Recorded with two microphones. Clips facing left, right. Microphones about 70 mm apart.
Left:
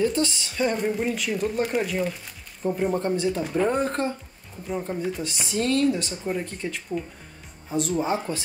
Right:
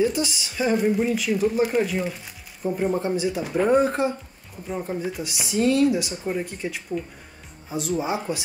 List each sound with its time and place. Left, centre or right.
0.0 s speech: centre